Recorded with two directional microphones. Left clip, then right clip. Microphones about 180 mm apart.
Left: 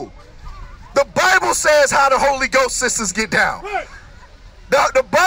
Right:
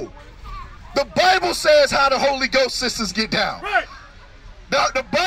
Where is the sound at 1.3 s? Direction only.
45° left (ahead or behind).